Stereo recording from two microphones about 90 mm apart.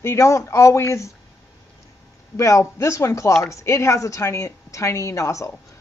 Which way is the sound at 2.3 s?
35° left (ahead or behind).